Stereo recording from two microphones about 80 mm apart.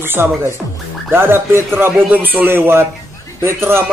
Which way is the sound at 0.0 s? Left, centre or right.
Right.